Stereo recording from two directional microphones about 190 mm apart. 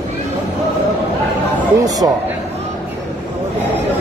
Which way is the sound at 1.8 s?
20° right (ahead or behind).